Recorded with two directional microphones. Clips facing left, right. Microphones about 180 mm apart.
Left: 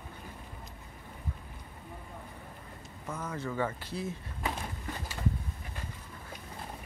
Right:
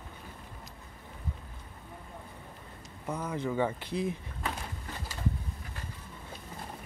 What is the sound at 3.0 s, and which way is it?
Speech, 15° right (ahead or behind).